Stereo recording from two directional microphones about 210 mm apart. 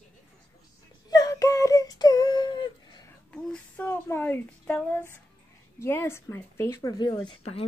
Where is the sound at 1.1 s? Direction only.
15° left (ahead or behind).